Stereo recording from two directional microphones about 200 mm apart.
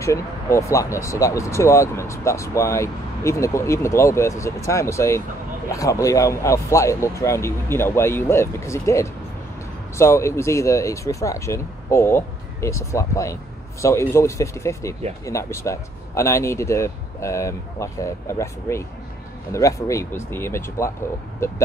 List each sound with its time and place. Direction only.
0.0 s speech: 15° left (ahead or behind)